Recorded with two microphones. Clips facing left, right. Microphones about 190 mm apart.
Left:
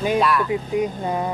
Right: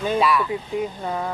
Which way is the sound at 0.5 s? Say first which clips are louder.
Left 4 dB; 15° left (ahead or behind).